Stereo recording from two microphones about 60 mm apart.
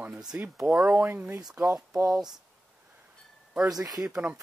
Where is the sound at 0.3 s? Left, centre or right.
Right.